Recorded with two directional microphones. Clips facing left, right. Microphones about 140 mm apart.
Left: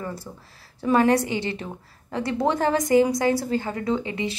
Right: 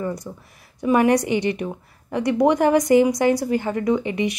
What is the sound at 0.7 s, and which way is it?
A woman's voice, 15° right (ahead or behind).